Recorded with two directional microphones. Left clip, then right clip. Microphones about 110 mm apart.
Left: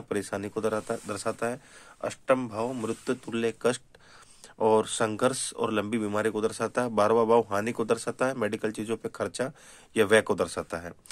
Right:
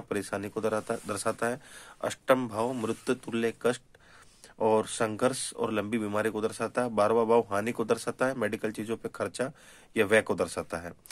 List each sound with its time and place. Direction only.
0.1 s speech: 20° left (ahead or behind); by 2.0 s centre (ahead or behind)
2.0 s speech: 15° right (ahead or behind)
3.3 s speech: 10° left (ahead or behind)
4.6 s speech: 25° left (ahead or behind)